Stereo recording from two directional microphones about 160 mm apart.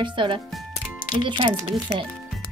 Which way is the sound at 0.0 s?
30° right (ahead or behind).